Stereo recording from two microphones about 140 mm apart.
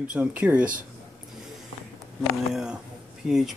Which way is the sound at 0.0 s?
10° right (ahead or behind).